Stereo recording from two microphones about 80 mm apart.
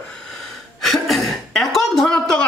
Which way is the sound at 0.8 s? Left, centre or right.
Centre.